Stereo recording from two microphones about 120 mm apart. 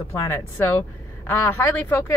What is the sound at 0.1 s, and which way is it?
Speech, 20° left (ahead or behind).